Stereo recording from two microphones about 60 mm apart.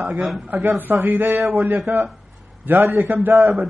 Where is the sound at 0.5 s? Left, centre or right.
Right.